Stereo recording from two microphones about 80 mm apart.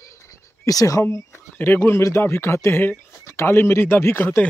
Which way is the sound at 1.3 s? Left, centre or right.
Left.